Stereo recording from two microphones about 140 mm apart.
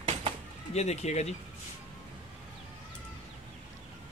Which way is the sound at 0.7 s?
50° left (ahead or behind).